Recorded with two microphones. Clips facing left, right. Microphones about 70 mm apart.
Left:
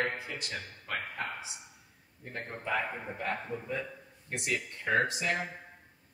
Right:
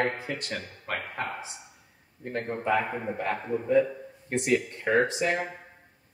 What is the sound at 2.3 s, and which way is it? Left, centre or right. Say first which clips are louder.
Speech: right 8 dB; right.